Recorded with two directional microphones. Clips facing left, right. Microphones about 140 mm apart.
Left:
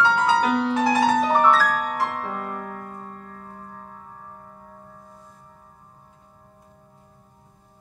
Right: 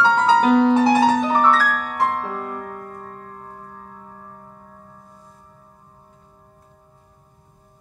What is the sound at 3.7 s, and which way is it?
Music, 5° right (ahead or behind).